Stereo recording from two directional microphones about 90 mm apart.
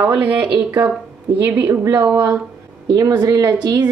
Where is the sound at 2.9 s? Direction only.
50° right (ahead or behind).